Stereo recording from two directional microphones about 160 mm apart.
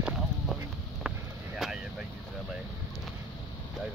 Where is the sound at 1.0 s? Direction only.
5° right (ahead or behind).